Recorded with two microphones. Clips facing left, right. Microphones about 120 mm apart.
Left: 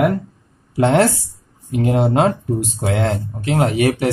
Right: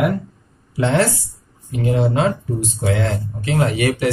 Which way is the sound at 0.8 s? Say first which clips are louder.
Left 3 dB; 50° left (ahead or behind).